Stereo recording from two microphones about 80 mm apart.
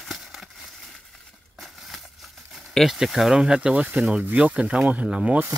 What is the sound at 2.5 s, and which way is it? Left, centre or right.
Speech, centre.